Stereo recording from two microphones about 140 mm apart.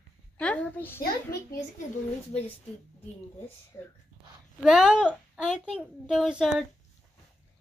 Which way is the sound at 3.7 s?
25° left (ahead or behind).